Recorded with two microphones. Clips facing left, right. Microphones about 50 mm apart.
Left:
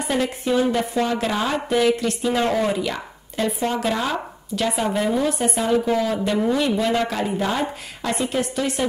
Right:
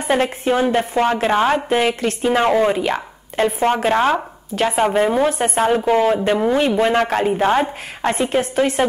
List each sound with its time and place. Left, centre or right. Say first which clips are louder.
0.1 s a woman's voice: right 5 dB; right